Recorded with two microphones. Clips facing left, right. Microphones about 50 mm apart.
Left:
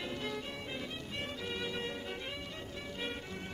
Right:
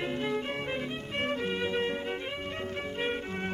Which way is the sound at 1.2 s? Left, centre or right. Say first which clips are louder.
Right 11 dB; right.